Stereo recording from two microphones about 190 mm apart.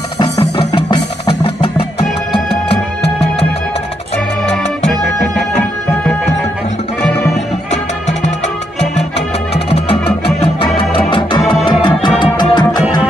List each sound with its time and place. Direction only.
0.2 s music: 25° left (ahead or behind)
9.7 s music: 30° left (ahead or behind)